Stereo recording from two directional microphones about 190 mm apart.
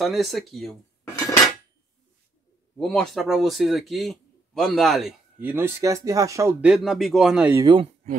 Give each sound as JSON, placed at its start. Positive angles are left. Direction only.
{"t": 0.0, "sound": "speech", "side_deg": 0}
{"t": 2.8, "sound": "speech", "side_deg": 0}
{"t": 6.6, "sound": "speech", "side_deg": 0}
{"t": 7.6, "sound": "speech", "side_deg": -25}